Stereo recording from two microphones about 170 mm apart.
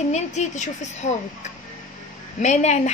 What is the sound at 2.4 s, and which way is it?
Speech, 40° left (ahead or behind).